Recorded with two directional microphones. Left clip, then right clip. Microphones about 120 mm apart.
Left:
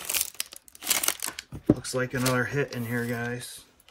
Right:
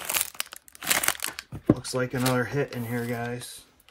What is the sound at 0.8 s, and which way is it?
Crumpling, 15° right (ahead or behind).